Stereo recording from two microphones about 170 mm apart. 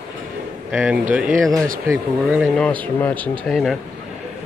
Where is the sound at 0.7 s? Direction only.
5° right (ahead or behind).